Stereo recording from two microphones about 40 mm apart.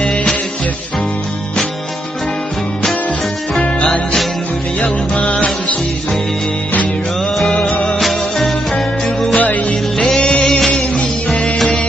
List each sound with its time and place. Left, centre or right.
0.0 s music: centre
3.6 s music: left
5.1 s music: left
8.0 s music: centre
8.7 s music: centre
9.4 s music: left
9.9 s music: centre